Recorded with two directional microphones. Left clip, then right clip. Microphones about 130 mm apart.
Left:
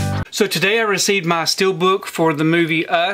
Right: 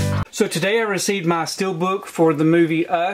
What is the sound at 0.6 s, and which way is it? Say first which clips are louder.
Speech: left 4 dB; 25° left (ahead or behind).